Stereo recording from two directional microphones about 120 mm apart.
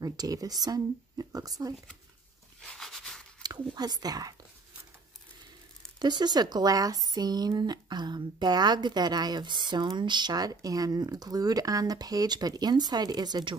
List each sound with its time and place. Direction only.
0.0 s speech: 30° right (ahead or behind)
2.6 s a sound: 5° left (ahead or behind)
3.4 s speech: 35° right (ahead or behind)
5.9 s speech: 35° right (ahead or behind)